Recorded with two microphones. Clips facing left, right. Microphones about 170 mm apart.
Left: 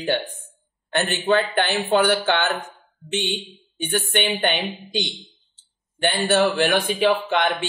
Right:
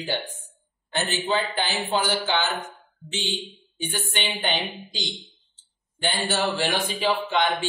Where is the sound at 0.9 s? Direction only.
60° left (ahead or behind).